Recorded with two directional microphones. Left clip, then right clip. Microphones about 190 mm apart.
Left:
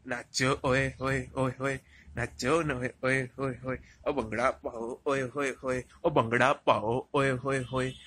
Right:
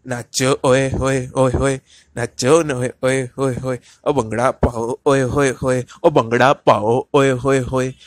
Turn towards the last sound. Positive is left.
turn(degrees=-35)  # may be behind; listen again after turning